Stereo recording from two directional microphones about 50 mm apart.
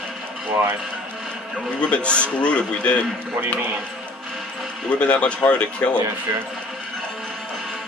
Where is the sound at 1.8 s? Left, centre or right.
Left.